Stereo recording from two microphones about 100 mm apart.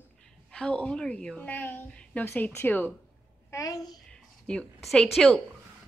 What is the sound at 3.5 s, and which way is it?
Speech, 35° left (ahead or behind).